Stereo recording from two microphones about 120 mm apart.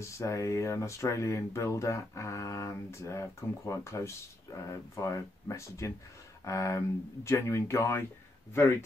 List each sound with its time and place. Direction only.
0.0 s speech: 25° left (ahead or behind)